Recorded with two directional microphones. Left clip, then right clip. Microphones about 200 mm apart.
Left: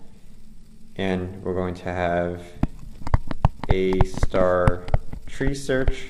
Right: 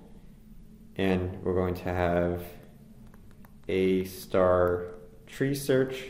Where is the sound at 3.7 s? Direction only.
20° left (ahead or behind).